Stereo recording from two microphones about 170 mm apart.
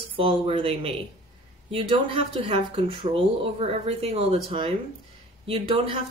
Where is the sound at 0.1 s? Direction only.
30° right (ahead or behind).